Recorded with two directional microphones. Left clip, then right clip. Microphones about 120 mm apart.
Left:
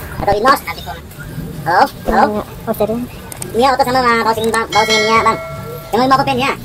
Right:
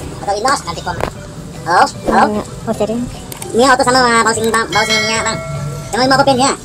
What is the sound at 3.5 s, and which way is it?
Speech, 20° right (ahead or behind).